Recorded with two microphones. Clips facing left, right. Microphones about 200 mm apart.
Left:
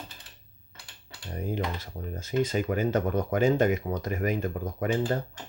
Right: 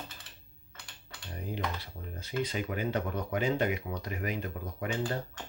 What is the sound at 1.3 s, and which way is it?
Speech, 45° left (ahead or behind).